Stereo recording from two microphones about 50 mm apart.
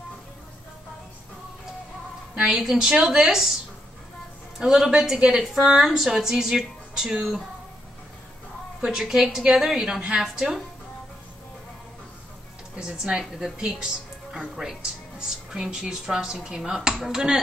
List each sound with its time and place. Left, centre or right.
2.4 s speech: centre
4.6 s speech: centre
8.8 s speech: centre
12.7 s speech: centre